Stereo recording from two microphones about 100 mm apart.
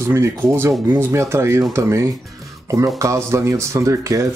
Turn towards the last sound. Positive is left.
turn(degrees=-30)  # may be behind; listen again after turning